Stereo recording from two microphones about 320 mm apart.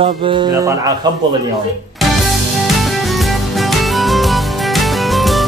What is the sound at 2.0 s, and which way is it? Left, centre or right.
Music, centre.